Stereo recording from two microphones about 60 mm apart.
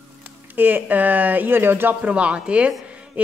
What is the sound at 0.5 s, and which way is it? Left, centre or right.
A man's voice, right.